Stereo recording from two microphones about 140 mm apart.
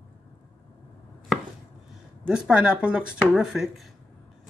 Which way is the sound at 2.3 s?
5° right (ahead or behind).